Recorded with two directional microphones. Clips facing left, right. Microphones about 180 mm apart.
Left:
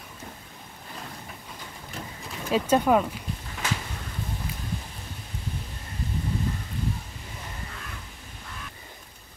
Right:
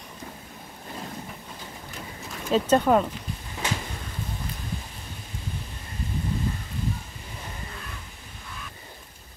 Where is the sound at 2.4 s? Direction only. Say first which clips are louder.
Right 1 dB; 10° left (ahead or behind).